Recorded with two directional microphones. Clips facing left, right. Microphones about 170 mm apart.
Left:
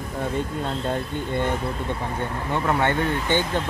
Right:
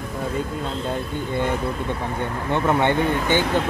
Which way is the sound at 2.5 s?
20° right (ahead or behind).